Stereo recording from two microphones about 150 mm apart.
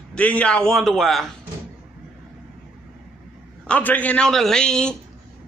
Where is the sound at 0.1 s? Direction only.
10° left (ahead or behind).